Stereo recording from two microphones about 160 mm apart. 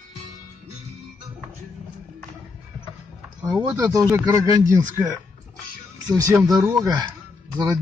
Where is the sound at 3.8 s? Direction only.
20° right (ahead or behind).